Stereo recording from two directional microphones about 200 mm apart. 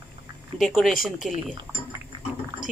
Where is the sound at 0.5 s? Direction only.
Centre (ahead or behind).